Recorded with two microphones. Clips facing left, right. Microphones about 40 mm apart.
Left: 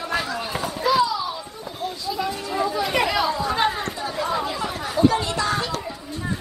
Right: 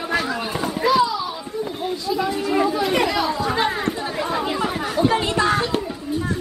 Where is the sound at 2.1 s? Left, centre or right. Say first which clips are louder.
Right 4 dB; centre.